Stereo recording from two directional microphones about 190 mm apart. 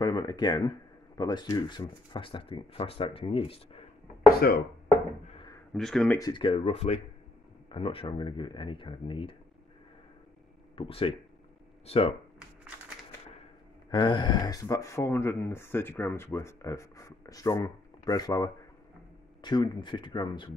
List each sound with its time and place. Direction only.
0.0 s speech: 20° left (ahead or behind)
5.2 s a sound: 30° left (ahead or behind)
5.7 s speech: 5° left (ahead or behind)
6.1 s speech: 20° left (ahead or behind)
10.8 s speech: 30° left (ahead or behind)
13.8 s speech: 20° left (ahead or behind)